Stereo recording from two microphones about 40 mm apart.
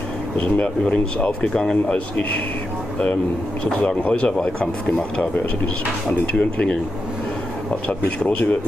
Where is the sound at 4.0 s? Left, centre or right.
Left.